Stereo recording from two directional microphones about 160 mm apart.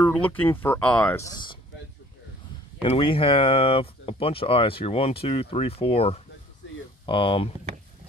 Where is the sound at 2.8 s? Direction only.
35° left (ahead or behind).